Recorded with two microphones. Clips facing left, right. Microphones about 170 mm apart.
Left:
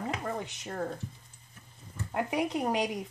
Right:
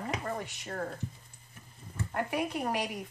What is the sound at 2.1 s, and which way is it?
Speech, 20° left (ahead or behind).